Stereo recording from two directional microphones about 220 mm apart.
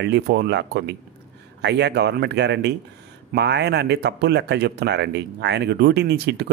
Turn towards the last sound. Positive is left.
turn(degrees=-45)  # may be behind; listen again after turning